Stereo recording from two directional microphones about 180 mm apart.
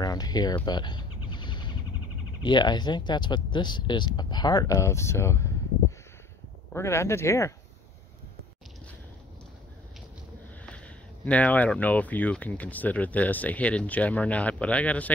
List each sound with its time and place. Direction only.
0.0 s speech: 20° left (ahead or behind)
0.7 s a sound: 25° left (ahead or behind)
2.4 s speech: 25° left (ahead or behind)
6.7 s speech: 15° left (ahead or behind)
11.2 s speech: 10° left (ahead or behind)